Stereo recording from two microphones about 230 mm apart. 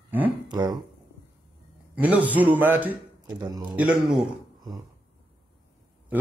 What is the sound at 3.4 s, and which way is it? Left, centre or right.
Speech, centre.